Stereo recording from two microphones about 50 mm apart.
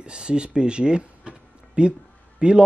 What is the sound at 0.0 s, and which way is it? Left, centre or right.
A man's voice, centre.